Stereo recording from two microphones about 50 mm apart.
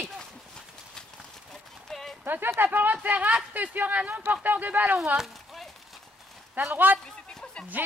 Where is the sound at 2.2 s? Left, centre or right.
Right.